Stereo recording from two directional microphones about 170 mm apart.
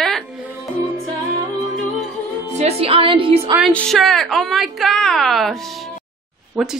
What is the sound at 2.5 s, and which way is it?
Speech, 35° right (ahead or behind).